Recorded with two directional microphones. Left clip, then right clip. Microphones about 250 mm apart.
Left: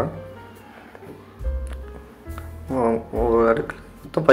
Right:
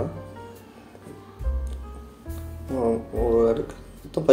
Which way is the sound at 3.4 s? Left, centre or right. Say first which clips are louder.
Left 3 dB; centre.